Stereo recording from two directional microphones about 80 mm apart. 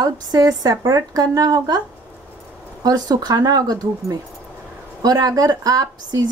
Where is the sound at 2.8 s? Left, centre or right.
Right.